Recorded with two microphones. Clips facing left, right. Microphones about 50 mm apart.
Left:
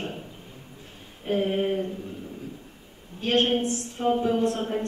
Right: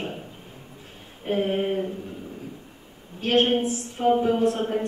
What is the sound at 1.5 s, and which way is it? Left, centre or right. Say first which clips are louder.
Speech: right 1 dB; centre.